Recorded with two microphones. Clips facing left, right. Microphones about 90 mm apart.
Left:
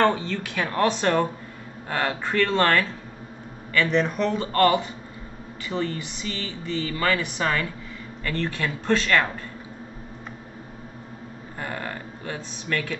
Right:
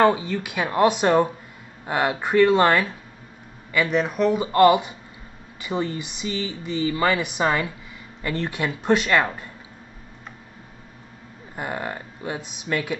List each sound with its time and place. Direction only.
0.0 s speech: 10° right (ahead or behind)
11.5 s speech: 15° right (ahead or behind)